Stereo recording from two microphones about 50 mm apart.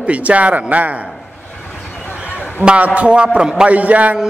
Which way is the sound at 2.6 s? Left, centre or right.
Right.